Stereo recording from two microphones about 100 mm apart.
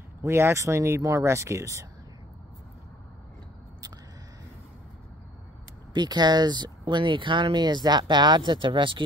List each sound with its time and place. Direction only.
0.2 s speech: 25° right (ahead or behind)
5.9 s speech: 45° right (ahead or behind)